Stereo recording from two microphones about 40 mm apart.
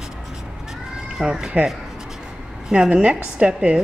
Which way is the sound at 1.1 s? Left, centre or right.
Centre.